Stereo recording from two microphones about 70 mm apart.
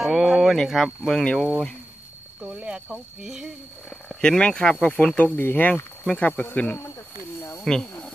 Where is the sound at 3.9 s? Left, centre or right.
Centre.